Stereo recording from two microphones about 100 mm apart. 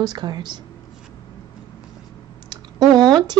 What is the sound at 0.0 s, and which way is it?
Speech, 45° right (ahead or behind).